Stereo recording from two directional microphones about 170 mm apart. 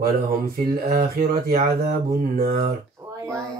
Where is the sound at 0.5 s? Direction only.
60° right (ahead or behind).